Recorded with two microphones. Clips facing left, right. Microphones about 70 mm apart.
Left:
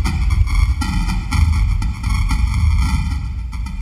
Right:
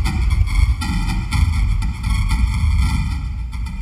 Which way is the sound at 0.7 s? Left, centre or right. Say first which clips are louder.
Left 1 dB; centre.